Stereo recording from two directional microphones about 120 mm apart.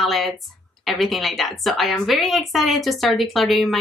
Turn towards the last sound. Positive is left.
turn(degrees=0)  # may be behind; listen again after turning